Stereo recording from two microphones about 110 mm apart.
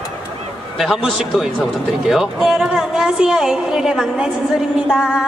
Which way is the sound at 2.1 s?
5° right (ahead or behind).